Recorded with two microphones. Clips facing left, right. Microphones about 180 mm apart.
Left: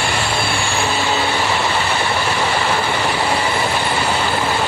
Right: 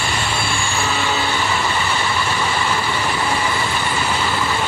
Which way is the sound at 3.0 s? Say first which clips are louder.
Left 2 dB; 35° left (ahead or behind).